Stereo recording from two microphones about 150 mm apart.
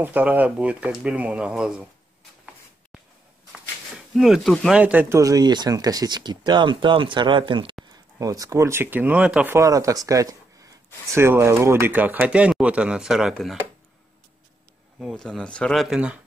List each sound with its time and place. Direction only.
0.0 s speech: 10° right (ahead or behind)
3.5 s a sound: 5° right (ahead or behind)
4.7 s speech: 10° right (ahead or behind)
5.2 s speech: 25° right (ahead or behind)
8.2 s speech: 25° right (ahead or behind)
9.6 s speech: 20° right (ahead or behind); by 13.6 s centre (ahead or behind)
15.0 s speech: centre (ahead or behind)